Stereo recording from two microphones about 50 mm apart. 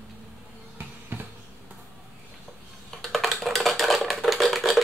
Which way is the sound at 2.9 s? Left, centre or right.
Centre.